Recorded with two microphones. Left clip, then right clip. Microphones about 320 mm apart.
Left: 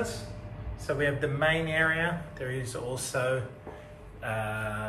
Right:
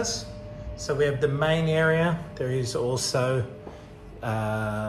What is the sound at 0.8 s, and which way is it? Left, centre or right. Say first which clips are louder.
Speech: right 5 dB; centre.